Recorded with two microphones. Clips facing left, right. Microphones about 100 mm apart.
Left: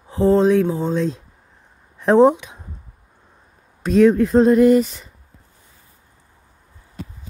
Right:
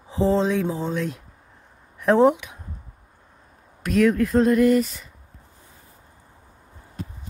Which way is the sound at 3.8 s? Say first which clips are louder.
Left 5 dB; 30° left (ahead or behind).